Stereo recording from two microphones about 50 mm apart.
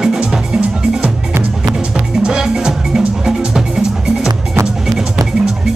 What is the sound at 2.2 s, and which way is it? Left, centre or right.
Music, centre.